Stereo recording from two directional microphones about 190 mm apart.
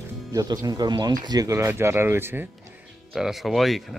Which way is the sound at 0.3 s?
20° right (ahead or behind).